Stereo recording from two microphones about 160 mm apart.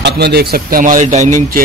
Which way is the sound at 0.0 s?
90° right.